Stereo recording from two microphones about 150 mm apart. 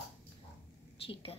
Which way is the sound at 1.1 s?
35° left (ahead or behind).